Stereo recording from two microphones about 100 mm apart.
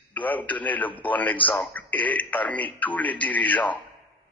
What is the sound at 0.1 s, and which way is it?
A man's voice, 15° left (ahead or behind).